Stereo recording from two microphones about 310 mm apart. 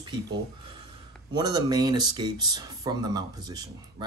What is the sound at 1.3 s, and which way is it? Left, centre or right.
Speech, centre.